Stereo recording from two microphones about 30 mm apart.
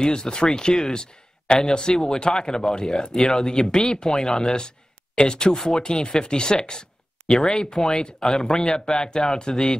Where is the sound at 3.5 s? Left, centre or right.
Left.